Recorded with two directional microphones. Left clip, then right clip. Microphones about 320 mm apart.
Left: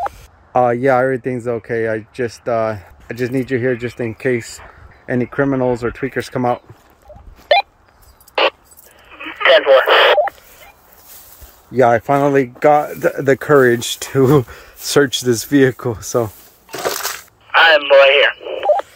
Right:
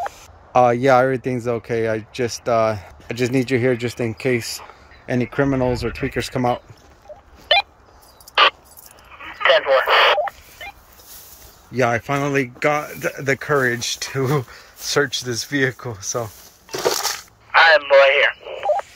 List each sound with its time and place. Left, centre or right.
0.5 s speech: centre
9.1 s telephone dialing: left
11.7 s speech: centre
16.7 s crushing: centre
17.5 s radio: left